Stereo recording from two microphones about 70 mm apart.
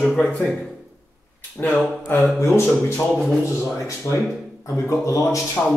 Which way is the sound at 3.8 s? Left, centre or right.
Left.